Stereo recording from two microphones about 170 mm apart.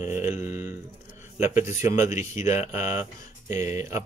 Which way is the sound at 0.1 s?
15° right (ahead or behind).